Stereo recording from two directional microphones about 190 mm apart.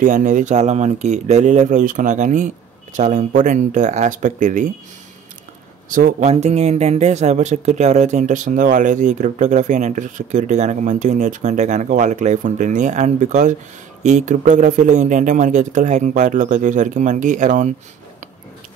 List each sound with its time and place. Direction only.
0.0 s speech: 45° right (ahead or behind)
5.9 s speech: 45° right (ahead or behind)